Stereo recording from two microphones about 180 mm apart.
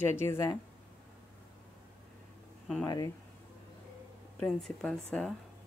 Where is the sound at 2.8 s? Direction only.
20° left (ahead or behind).